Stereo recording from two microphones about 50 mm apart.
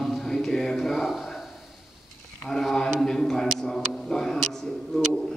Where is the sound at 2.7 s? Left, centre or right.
Centre.